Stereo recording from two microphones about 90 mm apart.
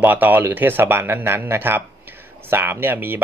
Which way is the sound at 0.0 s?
20° right (ahead or behind).